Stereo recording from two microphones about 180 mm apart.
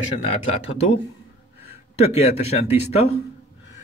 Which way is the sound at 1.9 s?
35° left (ahead or behind).